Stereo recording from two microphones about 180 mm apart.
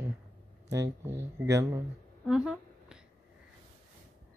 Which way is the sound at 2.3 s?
5° right (ahead or behind).